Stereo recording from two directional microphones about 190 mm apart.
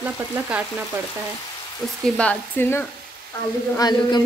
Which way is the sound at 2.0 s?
5° left (ahead or behind).